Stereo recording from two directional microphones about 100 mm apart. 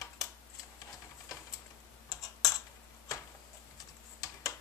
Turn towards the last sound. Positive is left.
turn(degrees=35)  # may be behind; listen again after turning